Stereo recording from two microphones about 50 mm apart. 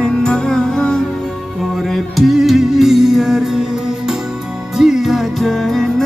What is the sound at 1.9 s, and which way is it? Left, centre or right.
Music, centre.